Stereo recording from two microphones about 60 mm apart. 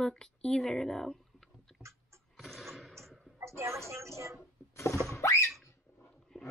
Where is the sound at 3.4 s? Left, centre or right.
Right.